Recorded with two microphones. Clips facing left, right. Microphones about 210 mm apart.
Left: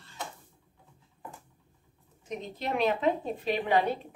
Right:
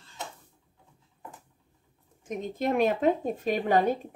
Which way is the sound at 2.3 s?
50° right (ahead or behind).